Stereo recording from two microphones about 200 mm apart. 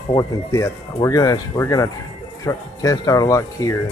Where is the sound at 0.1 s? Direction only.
15° left (ahead or behind).